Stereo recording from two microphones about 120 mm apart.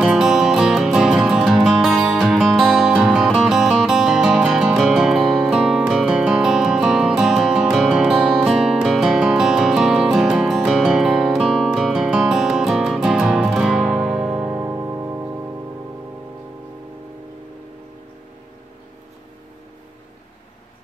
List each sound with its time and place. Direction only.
0.0 s music: 5° right (ahead or behind)
14.5 s music: 20° right (ahead or behind)